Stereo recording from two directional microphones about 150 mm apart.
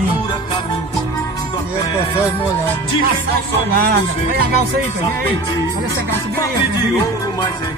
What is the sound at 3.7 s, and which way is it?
Speech, 90° right.